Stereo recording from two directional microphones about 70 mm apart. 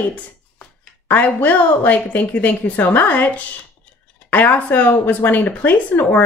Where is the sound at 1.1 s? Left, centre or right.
Left.